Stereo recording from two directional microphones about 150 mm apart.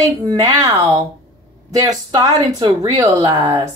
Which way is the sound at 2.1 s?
25° right (ahead or behind).